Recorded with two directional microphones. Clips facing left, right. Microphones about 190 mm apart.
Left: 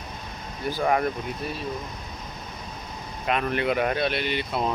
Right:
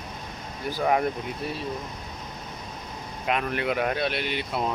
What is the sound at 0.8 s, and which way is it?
Speech, 10° right (ahead or behind).